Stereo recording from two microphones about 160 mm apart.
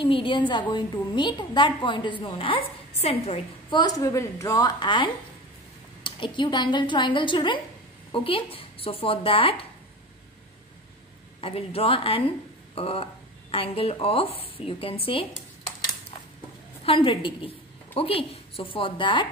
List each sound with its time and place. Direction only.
0.0 s a woman's voice: 30° left (ahead or behind)
3.8 s a woman's voice: 20° left (ahead or behind)
11.4 s speech: 35° left (ahead or behind)
16.8 s speech: 35° left (ahead or behind)